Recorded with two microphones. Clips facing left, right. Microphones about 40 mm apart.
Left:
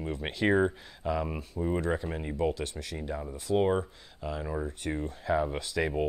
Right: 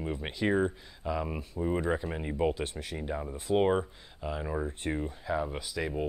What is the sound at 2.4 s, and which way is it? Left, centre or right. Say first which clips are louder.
Speech: right 1 dB; centre.